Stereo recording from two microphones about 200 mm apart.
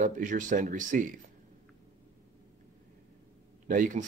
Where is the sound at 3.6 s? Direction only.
40° right (ahead or behind).